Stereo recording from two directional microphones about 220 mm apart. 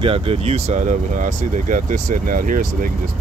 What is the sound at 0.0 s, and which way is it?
Speech, 25° right (ahead or behind).